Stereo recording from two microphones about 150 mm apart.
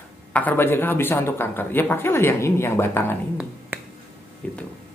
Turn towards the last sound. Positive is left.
turn(degrees=10)  # may be behind; listen again after turning